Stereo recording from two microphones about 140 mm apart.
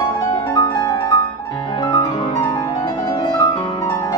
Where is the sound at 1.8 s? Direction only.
45° left (ahead or behind).